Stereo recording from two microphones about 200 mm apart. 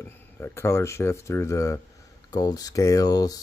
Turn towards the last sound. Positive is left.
turn(degrees=20)  # may be behind; listen again after turning